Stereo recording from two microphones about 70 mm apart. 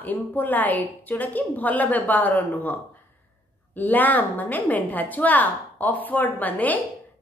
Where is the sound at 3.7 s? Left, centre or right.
Left.